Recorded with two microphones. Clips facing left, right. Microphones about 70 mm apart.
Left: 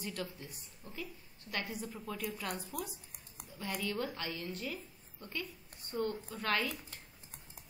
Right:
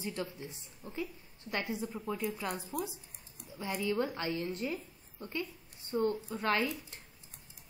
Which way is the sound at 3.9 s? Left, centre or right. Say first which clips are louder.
Right 5 dB; right.